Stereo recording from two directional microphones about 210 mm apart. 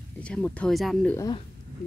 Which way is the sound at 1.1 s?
15° left (ahead or behind).